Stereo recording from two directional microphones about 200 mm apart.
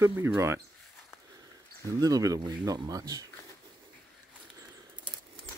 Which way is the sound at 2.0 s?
20° right (ahead or behind).